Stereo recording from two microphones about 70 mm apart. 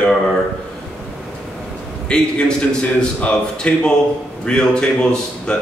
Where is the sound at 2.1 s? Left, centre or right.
Centre.